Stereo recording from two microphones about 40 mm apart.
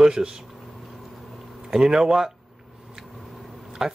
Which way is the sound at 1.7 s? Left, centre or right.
Centre.